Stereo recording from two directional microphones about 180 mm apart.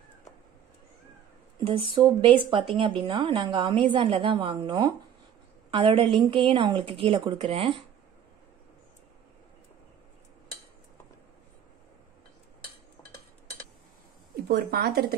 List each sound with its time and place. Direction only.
1.6 s a woman's voice: 30° right (ahead or behind)
14.5 s speech: 60° right (ahead or behind)